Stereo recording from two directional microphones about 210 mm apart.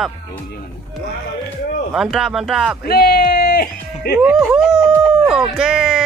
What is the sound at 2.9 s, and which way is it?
Music, 45° left (ahead or behind).